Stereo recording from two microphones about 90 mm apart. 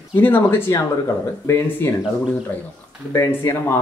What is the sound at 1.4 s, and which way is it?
Speech, 30° left (ahead or behind).